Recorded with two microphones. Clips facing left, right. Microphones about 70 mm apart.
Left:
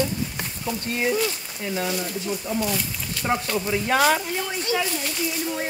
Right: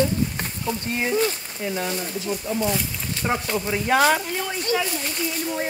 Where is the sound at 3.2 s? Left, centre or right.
Centre.